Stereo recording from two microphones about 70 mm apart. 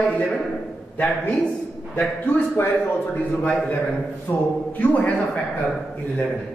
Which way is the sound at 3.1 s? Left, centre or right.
Centre.